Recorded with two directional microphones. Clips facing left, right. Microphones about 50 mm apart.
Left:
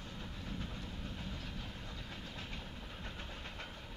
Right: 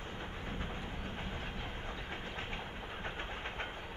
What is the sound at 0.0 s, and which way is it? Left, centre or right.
Train, right.